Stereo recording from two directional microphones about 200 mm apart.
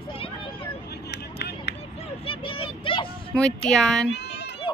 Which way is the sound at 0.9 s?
55° left (ahead or behind).